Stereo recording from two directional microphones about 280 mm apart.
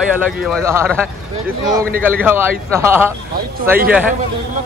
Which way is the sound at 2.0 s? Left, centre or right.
Centre.